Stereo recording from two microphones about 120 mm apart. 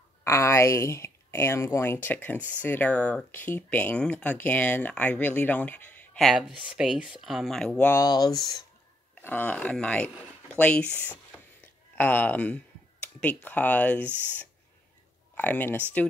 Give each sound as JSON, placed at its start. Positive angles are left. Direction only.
{"t": 0.2, "sound": "speech", "side_deg": 25}
{"t": 6.1, "sound": "speech", "side_deg": 0}
{"t": 6.5, "sound": "speech", "side_deg": -10}
{"t": 8.0, "sound": "speech", "side_deg": 35}
{"t": 9.2, "sound": "speech", "side_deg": 15}
{"t": 15.3, "sound": "speech", "side_deg": 15}